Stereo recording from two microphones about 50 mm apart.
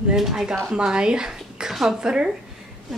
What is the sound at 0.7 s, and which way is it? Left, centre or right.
A woman's voice, centre.